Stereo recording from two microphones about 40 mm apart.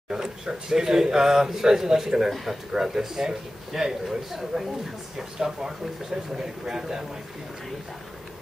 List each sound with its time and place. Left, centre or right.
0.1 s speech: centre